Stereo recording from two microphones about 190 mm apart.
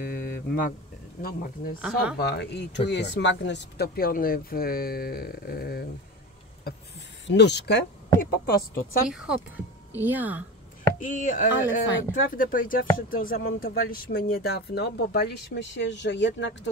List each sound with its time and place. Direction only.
0.0 s a sound: 50° left (ahead or behind)
1.2 s speech: 50° left (ahead or behind)
1.8 s speech: 5° right (ahead or behind)
2.1 s speech: 60° left (ahead or behind)
7.2 s speech: 65° left (ahead or behind)
9.1 s speech: 5° right (ahead or behind)
11.0 s speech: 45° left (ahead or behind); by 16.5 s 70° left (ahead or behind)